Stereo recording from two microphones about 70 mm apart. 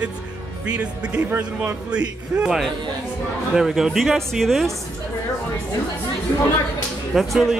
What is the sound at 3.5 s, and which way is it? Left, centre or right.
Speech, centre.